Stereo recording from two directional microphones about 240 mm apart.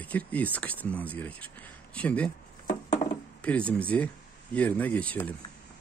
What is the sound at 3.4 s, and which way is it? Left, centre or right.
Speech, centre.